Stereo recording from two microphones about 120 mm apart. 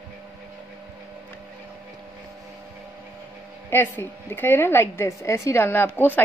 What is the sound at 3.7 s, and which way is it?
A woman's voice, 20° left (ahead or behind).